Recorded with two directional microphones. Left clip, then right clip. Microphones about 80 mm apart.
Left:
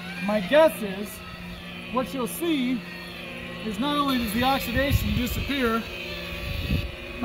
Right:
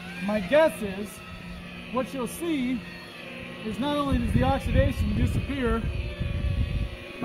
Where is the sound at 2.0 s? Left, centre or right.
Right.